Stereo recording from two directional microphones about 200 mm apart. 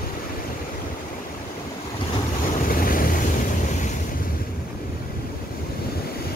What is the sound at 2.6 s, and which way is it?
Waves, 45° left (ahead or behind).